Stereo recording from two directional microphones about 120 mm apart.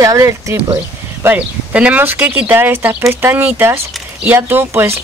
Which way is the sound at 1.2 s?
15° right (ahead or behind).